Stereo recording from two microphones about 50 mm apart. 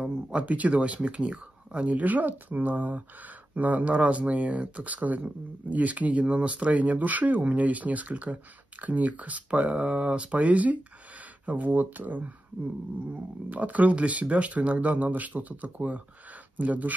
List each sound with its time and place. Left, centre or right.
0.0 s speech: right